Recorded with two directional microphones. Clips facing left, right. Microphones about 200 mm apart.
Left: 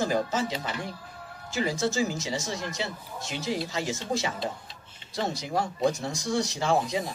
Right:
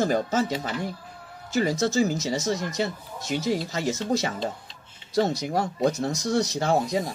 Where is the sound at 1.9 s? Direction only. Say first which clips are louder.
Right 5 dB; 40° right (ahead or behind).